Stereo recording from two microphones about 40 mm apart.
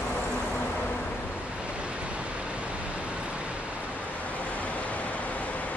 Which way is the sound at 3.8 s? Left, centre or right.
Left.